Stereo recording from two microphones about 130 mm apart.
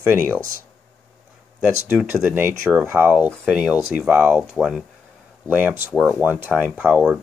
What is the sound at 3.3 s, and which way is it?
Speech, centre (ahead or behind).